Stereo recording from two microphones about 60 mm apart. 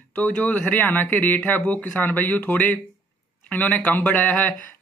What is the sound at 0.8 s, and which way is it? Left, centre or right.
Speech, left.